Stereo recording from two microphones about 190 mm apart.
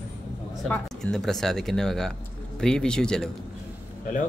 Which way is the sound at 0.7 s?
5° left (ahead or behind).